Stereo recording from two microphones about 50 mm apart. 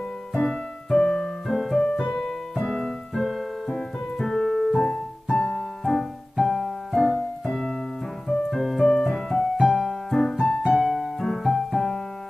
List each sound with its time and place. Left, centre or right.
0.3 s music: centre
1.5 s keyboard: centre
1.8 s keyboard: centre
3.2 s keyboard: centre
4.7 s music: centre
5.9 s music: centre
7.4 s piano: centre
8.3 s music: centre
10.8 s music: centre
11.1 s music: centre